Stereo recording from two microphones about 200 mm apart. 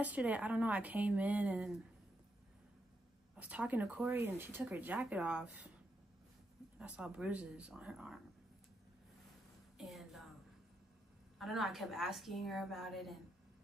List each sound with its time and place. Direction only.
0.0 s speech: 5° right (ahead or behind)
3.3 s speech: 5° right (ahead or behind)
6.8 s a woman's voice: 5° right (ahead or behind)
9.8 s a sound: centre (ahead or behind)
11.3 s a woman's voice: centre (ahead or behind)